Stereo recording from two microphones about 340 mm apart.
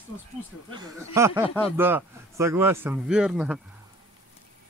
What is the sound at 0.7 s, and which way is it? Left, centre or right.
Speech, centre.